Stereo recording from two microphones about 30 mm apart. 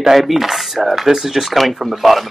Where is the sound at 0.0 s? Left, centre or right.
Centre.